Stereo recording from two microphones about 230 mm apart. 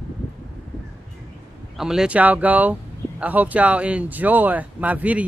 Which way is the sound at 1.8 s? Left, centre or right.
Centre.